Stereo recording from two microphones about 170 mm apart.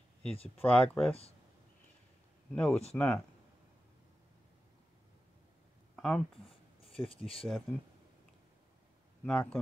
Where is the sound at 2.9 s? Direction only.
5° left (ahead or behind).